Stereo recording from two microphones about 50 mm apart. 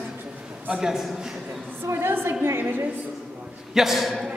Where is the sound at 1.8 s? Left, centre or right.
Right.